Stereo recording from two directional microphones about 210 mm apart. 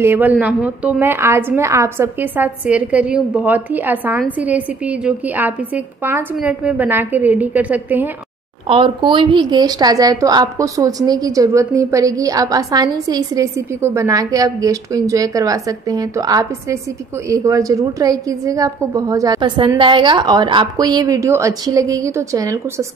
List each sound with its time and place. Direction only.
0.0 s a woman's voice: 10° right (ahead or behind)
8.6 s a woman's voice: 25° right (ahead or behind)